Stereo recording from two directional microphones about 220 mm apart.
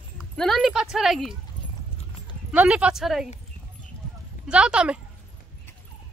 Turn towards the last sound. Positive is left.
turn(degrees=-5)  # may be behind; listen again after turning